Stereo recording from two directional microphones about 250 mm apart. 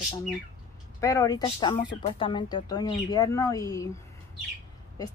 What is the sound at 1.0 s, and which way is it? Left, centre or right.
Speech, centre.